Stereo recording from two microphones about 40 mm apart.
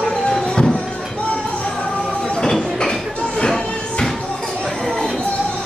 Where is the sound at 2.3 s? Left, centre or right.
Centre.